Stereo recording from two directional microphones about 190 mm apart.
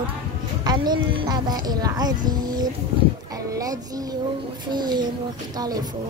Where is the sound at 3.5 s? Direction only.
20° right (ahead or behind).